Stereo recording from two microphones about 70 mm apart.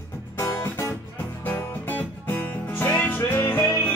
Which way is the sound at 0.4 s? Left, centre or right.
Left.